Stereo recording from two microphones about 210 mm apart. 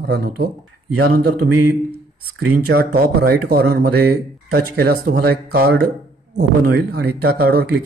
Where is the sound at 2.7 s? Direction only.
45° right (ahead or behind).